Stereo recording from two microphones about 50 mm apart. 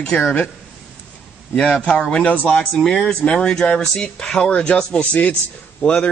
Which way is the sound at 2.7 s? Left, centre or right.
Centre.